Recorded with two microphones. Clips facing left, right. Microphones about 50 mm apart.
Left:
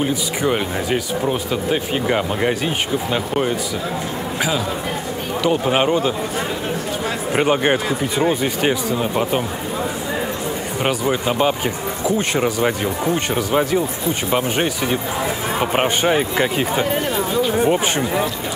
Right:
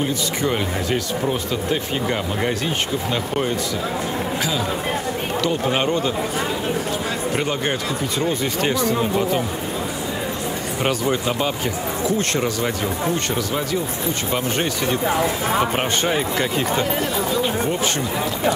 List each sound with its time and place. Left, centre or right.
0.0 s speech: centre
5.4 s speech: centre
7.3 s speech: left
10.8 s speech: centre